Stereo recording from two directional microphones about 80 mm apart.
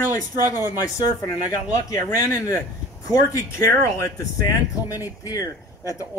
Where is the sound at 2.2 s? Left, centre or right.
Left.